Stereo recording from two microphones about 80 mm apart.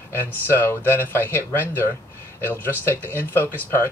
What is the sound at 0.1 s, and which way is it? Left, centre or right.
Speech, left.